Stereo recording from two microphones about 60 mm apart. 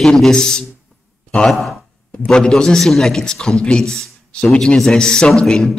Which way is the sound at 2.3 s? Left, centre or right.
Centre.